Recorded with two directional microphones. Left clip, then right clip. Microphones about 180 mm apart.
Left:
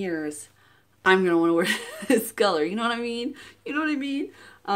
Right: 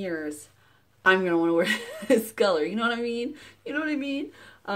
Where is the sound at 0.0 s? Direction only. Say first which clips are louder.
Left 2 dB; 20° left (ahead or behind).